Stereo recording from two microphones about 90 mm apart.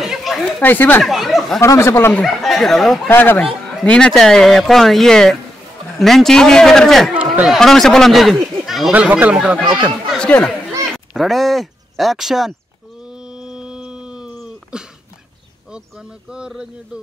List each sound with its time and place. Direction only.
0.0 s a sound: centre (ahead or behind)
0.6 s speech: 20° left (ahead or behind)
1.0 s speech: centre (ahead or behind)
1.6 s speech: 30° left (ahead or behind)
2.2 s speech: centre (ahead or behind)
3.1 s speech: 20° left (ahead or behind); by 8.9 s centre (ahead or behind)
8.9 s speech: 15° right (ahead or behind)
10.0 s speech: 10° left (ahead or behind)
11.1 s speech: centre (ahead or behind)
13.1 s a sound: 10° right (ahead or behind)
15.7 s speech: 10° right (ahead or behind)